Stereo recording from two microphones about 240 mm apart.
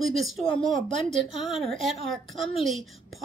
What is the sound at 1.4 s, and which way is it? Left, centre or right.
A woman's voice, centre.